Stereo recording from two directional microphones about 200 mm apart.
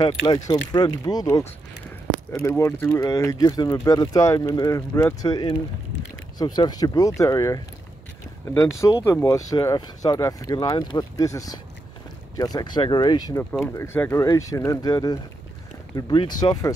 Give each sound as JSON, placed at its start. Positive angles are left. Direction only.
{"t": 0.0, "sound": "speech", "side_deg": 20}
{"t": 9.0, "sound": "speech", "side_deg": 15}